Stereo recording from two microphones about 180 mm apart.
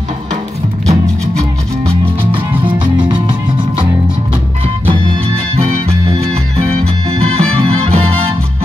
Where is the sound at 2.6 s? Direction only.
25° right (ahead or behind).